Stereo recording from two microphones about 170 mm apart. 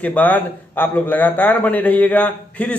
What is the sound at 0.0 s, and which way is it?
A man's voice, 10° left (ahead or behind).